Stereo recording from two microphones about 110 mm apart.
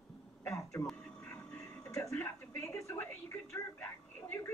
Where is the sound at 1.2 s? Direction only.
20° left (ahead or behind).